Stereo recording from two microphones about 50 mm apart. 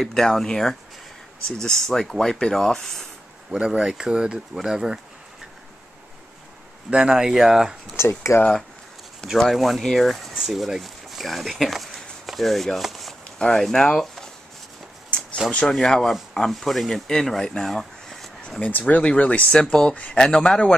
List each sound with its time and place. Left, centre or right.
0.0 s speech: centre
3.5 s speech: centre
6.9 s speech: centre
7.9 s speech: left
9.4 s speech: centre
15.7 s speech: centre
18.6 s speech: left
19.5 s speech: centre